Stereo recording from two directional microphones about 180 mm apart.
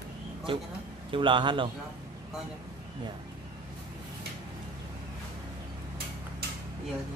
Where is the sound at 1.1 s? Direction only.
30° right (ahead or behind).